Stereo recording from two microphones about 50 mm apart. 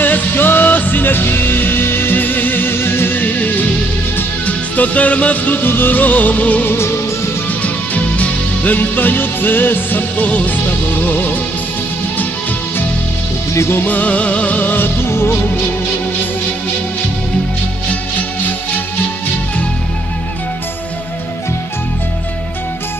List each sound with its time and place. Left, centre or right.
0.0 s music: left
13.8 s music: left
15.0 s music: left